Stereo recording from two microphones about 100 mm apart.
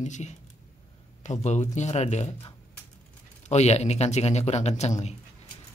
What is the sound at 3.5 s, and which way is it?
Speech, 90° left.